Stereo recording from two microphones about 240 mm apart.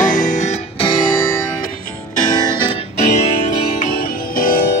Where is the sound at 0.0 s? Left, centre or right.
Left.